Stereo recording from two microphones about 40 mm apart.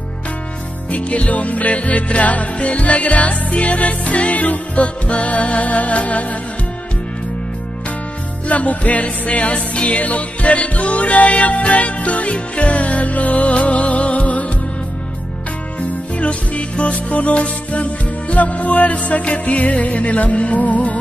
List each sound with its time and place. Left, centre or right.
0.8 s music: left
8.5 s music: left
16.2 s music: left